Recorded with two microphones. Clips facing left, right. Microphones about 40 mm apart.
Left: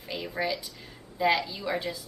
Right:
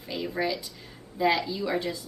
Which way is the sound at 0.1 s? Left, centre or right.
Centre.